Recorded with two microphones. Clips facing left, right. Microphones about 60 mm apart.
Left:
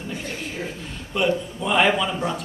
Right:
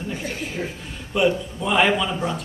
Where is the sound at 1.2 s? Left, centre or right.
Centre.